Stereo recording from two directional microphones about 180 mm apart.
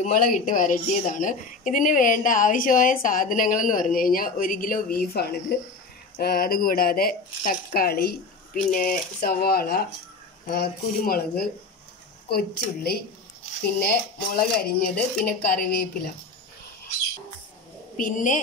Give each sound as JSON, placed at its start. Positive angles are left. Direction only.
{"t": 0.0, "sound": "a woman's voice", "side_deg": 45}
{"t": 17.9, "sound": "a woman's voice", "side_deg": 45}